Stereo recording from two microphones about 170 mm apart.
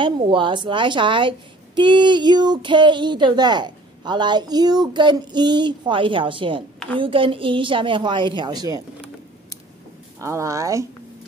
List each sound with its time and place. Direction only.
0.0 s speech: 30° right (ahead or behind)
10.2 s a woman's voice: 20° right (ahead or behind)